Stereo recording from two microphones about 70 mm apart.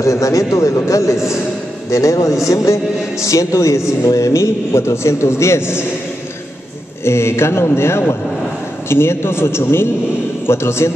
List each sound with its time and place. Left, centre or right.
0.0 s a man's voice: left
7.1 s a man's voice: left